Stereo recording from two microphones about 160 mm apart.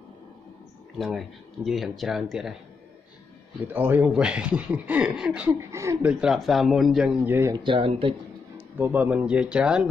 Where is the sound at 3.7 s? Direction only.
10° right (ahead or behind).